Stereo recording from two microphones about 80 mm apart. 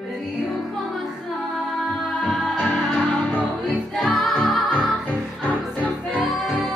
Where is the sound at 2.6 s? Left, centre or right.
Centre.